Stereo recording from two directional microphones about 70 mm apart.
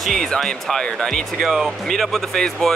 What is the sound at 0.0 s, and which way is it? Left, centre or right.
Speech, centre.